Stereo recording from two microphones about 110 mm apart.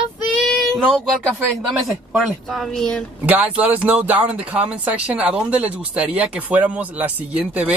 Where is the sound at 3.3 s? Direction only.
15° right (ahead or behind).